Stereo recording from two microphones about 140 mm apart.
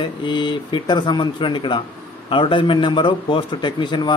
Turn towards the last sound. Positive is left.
turn(degrees=35)  # may be behind; listen again after turning